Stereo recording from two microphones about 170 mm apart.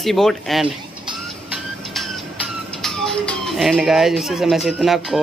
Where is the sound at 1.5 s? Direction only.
Centre (ahead or behind).